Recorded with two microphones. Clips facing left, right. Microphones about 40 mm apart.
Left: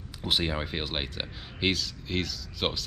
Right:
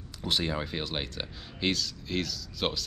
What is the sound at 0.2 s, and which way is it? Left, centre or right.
Speech, centre.